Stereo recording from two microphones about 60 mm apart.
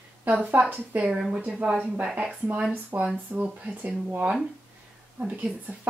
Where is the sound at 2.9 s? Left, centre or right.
Right.